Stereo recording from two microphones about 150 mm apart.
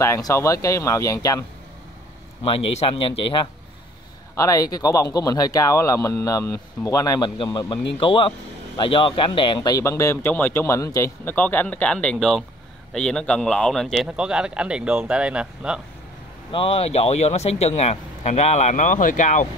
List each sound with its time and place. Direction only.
0.0 s speech: 20° left (ahead or behind)
2.4 s speech: 40° left (ahead or behind)
4.4 s a man's voice: 25° left (ahead or behind); by 15.8 s 5° right (ahead or behind)
16.5 s speech: 40° left (ahead or behind); by 19.4 s 55° left (ahead or behind)